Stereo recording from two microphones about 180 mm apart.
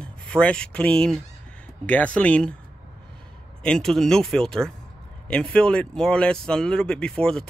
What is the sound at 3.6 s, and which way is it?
Speech, 5° left (ahead or behind).